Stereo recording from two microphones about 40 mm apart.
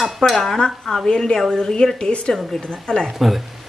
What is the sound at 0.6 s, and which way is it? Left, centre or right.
A woman's voice, centre.